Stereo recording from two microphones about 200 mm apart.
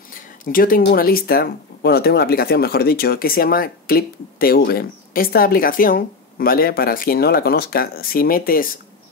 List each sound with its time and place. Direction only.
0.1 s speech: 45° left (ahead or behind)